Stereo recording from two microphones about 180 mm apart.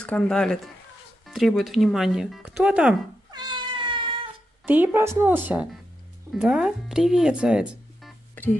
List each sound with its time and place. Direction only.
0.0 s speech: 5° left (ahead or behind)
3.3 s cat: 25° right (ahead or behind)
4.6 s a woman's voice: 10° right (ahead or behind)